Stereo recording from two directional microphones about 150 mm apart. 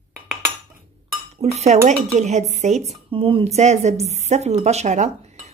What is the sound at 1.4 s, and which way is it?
A woman's voice, 45° right (ahead or behind).